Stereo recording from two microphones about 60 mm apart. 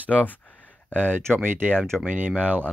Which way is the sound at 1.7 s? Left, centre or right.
Centre.